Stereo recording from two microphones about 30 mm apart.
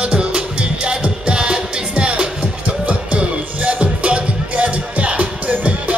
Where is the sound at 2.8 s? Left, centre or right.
Right.